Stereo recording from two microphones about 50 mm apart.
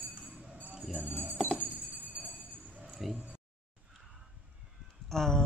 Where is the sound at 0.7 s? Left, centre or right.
Centre.